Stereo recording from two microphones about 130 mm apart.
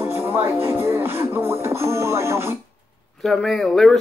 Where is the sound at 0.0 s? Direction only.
20° right (ahead or behind).